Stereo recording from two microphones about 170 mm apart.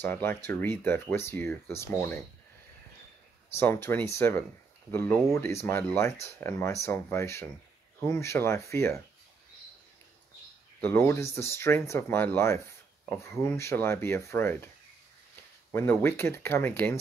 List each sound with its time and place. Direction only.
0.0 s speech: 10° left (ahead or behind)
3.5 s speech: 15° left (ahead or behind)
10.8 s speech: 15° left (ahead or behind)
15.7 s speech: 10° left (ahead or behind)